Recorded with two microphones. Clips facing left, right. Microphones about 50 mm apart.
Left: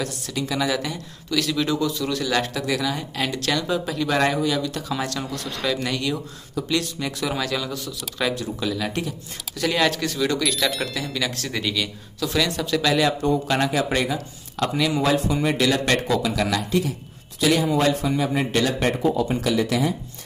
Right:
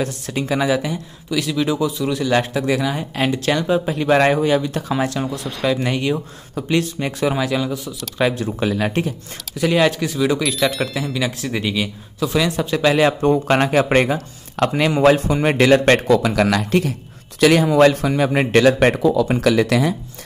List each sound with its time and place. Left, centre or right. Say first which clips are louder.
0.0 s speech: right 5 dB; right
7.4 s speech: right 5 dB; centre
8.5 s speech: right 6 dB; right
9.6 s speech: right 5 dB; centre; by 16.0 s right
16.1 s a man's voice: right 6 dB; right